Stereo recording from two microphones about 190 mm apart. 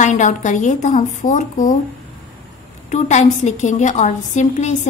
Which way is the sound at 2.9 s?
35° left (ahead or behind).